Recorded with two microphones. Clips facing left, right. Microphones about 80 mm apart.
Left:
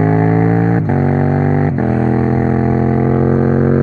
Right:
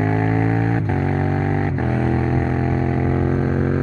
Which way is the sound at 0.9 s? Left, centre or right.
Left.